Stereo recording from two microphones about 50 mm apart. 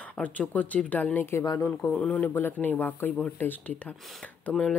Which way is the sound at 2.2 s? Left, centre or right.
Left.